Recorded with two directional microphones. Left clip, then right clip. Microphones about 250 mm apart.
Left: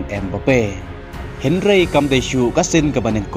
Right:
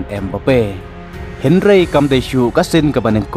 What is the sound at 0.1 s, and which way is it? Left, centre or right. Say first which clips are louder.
Speech: right 2 dB; centre.